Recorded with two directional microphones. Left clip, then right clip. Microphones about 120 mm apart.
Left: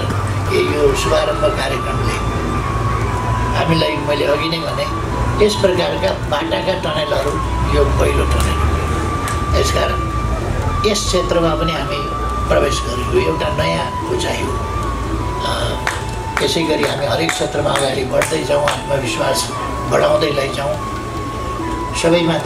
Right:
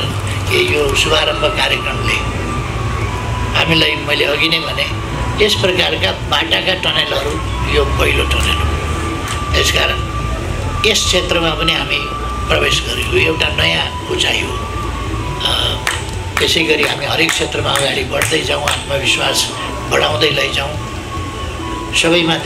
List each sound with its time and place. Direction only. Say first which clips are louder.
0.5 s speech: right 1 dB; 25° right (ahead or behind)
3.5 s speech: right 5 dB; 25° right (ahead or behind)
9.5 s speech: right 4 dB; 25° right (ahead or behind)
16.3 s speech: right 4 dB; 25° right (ahead or behind)
19.0 s speech: right 3 dB; 25° right (ahead or behind)
21.9 s speech: right 2 dB; 30° right (ahead or behind)